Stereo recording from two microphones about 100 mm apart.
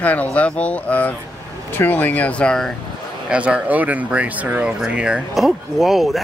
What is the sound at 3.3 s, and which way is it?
Speech, 10° right (ahead or behind).